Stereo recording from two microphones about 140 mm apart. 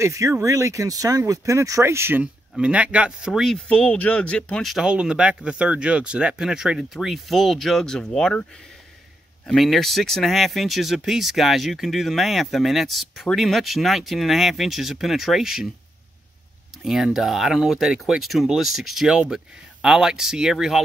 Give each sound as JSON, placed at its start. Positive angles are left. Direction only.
{"t": 0.0, "sound": "speech", "side_deg": -20}
{"t": 9.5, "sound": "speech", "side_deg": 0}
{"t": 16.8, "sound": "speech", "side_deg": 0}